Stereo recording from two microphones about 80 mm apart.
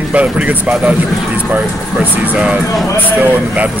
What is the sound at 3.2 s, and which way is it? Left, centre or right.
Speech, centre.